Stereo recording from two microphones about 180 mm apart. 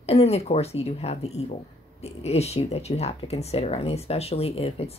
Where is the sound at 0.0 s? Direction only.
35° left (ahead or behind).